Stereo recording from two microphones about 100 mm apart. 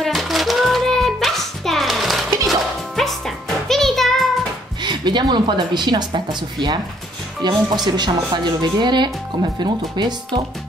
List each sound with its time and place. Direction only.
0.0 s music: centre (ahead or behind)
4.8 s speech: 50° right (ahead or behind)